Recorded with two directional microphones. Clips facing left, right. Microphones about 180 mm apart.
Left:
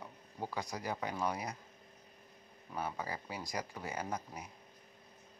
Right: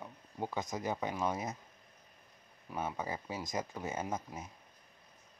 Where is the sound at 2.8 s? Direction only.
20° right (ahead or behind).